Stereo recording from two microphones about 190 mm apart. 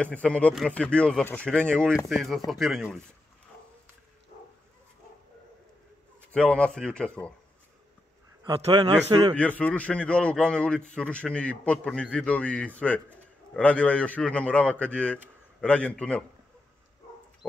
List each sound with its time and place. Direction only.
0.0 s speech: 5° left (ahead or behind)
6.3 s speech: 5° left (ahead or behind)
8.5 s a man's voice: 25° right (ahead or behind)
9.4 s a man's voice: 5° left (ahead or behind)